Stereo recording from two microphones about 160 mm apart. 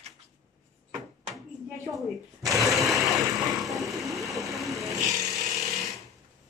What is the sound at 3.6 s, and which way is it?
Vehicle, centre (ahead or behind).